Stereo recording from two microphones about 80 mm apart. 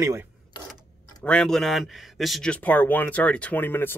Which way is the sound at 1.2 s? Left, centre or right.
Centre.